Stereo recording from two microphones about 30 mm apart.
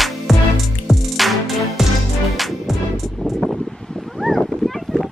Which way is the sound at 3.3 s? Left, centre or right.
Centre.